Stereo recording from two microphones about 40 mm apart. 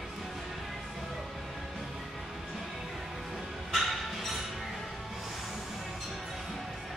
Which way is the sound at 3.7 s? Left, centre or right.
Centre.